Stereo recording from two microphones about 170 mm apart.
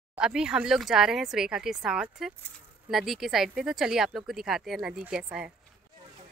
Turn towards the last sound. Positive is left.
turn(degrees=-5)  # may be behind; listen again after turning